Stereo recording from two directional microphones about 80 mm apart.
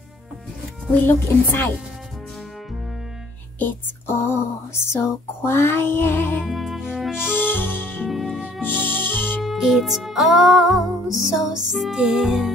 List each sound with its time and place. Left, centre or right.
0.9 s music: left
3.5 s a sound: left
5.0 s music: left
6.4 s music: centre
7.2 s music: left
8.1 s music: centre
8.6 s music: left
9.4 s music: centre